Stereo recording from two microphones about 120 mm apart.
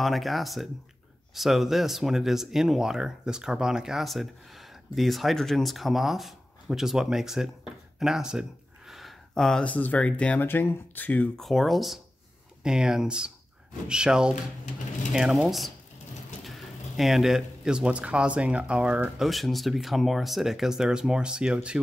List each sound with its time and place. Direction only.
0.0 s speech: centre (ahead or behind)
11.4 s speech: centre (ahead or behind)
19.2 s speech: centre (ahead or behind)